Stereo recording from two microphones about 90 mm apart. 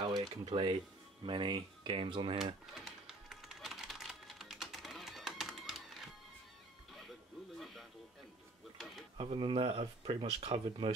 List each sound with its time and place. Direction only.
0.0 s speech: 55° right (ahead or behind); by 2.3 s 70° right (ahead or behind)
2.6 s typing: centre (ahead or behind)
7.5 s music: centre (ahead or behind)
8.7 s a sound: centre (ahead or behind)
9.2 s speech: 80° right